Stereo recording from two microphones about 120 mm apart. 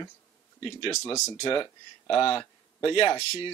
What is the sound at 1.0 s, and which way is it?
Speech, 20° left (ahead or behind).